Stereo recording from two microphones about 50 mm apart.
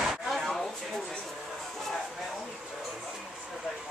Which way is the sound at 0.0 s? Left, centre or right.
Centre.